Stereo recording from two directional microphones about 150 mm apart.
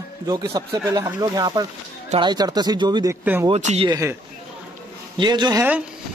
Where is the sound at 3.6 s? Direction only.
45° right (ahead or behind).